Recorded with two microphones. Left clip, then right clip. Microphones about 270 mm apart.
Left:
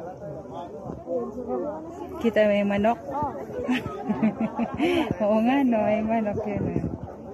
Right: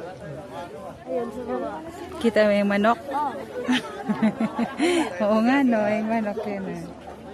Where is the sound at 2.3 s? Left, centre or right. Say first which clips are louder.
Right 2 dB; right.